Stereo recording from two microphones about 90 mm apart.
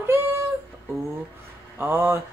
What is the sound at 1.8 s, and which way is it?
Speech, 25° right (ahead or behind).